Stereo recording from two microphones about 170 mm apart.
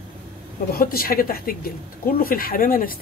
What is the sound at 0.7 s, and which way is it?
Speech, 60° left (ahead or behind).